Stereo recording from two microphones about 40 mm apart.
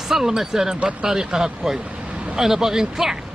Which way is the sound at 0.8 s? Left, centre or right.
Right.